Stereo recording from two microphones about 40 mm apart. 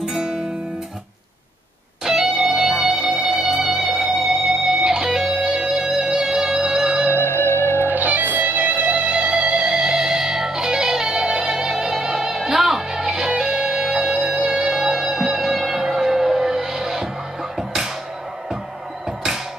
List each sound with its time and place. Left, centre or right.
0.0 s guitar: centre
2.1 s music: centre
2.5 s music: centre
4.6 s music: centre
7.2 s music: left
7.8 s music: right; by 17.0 s centre
19.0 s music: centre